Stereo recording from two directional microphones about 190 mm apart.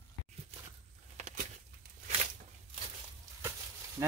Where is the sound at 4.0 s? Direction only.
15° right (ahead or behind).